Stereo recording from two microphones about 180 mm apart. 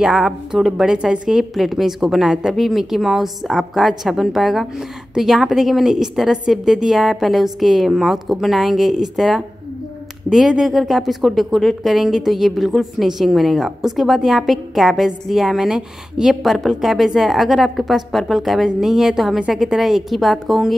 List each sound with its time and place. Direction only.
0.0 s speech: 5° right (ahead or behind)